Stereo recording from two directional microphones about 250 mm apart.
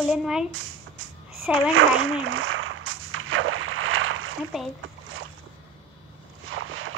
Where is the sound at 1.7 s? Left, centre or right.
Right.